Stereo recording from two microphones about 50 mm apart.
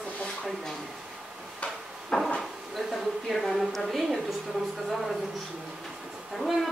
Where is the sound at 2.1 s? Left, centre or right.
Centre.